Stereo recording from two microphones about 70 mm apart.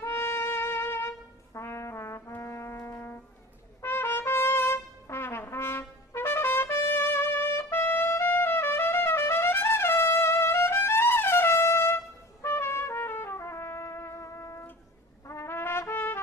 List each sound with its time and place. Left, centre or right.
0.0 s brass instrument: left
3.8 s trumpet: left
15.2 s brass instrument: left
15.9 s trumpet: left